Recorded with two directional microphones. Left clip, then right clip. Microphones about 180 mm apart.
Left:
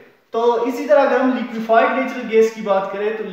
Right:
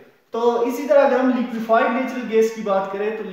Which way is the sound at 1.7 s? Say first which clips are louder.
Left 3 dB; 15° right (ahead or behind).